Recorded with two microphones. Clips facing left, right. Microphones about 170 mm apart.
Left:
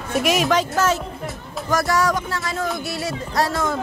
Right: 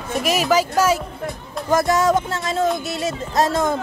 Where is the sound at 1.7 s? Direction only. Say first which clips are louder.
Right 3 dB; 20° right (ahead or behind).